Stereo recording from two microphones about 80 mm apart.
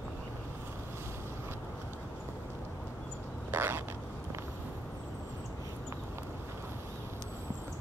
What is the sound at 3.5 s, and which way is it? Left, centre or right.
Duck, right.